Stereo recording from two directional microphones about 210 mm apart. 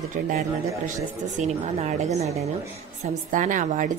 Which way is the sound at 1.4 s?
35° right (ahead or behind).